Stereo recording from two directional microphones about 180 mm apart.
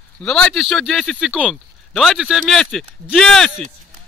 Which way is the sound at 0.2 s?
5° left (ahead or behind).